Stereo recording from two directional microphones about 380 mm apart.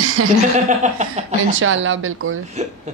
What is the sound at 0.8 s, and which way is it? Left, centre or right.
Speech, centre.